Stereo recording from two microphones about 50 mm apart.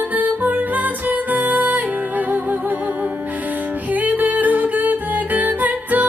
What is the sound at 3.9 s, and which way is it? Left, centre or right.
Music, right.